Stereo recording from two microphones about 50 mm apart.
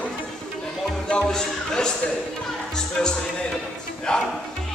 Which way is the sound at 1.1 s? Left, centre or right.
Centre.